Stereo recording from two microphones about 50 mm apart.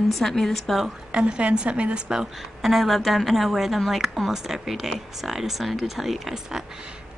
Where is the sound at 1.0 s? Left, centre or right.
Centre.